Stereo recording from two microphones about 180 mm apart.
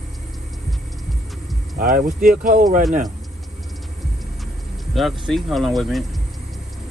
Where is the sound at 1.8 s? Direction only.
50° right (ahead or behind).